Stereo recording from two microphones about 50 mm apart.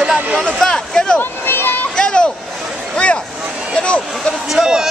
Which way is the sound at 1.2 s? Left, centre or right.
Left.